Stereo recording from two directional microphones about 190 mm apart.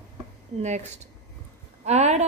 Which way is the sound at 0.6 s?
35° right (ahead or behind).